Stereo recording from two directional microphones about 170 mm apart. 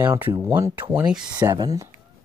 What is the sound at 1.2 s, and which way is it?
Speech, 25° right (ahead or behind).